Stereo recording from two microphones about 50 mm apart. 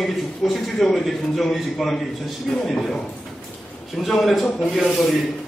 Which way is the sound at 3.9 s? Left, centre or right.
Centre.